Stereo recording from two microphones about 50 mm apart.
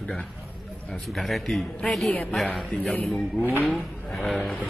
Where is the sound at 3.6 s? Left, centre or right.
Centre.